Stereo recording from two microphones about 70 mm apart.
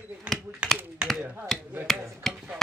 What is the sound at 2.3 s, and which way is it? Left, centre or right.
Chop, centre.